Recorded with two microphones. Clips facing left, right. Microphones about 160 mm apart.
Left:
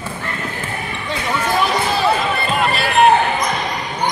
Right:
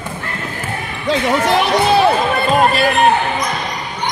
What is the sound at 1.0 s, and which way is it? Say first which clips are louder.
Basketball bounce: right 7 dB; 75° right (ahead or behind).